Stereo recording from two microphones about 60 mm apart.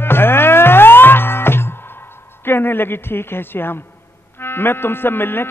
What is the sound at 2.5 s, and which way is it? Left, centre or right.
A woman's voice, left.